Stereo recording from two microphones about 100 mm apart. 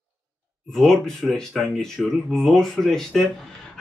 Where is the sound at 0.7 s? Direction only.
5° left (ahead or behind).